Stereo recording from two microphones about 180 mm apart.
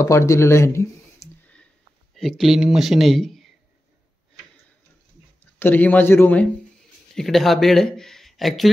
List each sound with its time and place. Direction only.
0.0 s a sound: 15° left (ahead or behind)
2.1 s speech: centre (ahead or behind)
5.6 s a man's voice: 10° left (ahead or behind)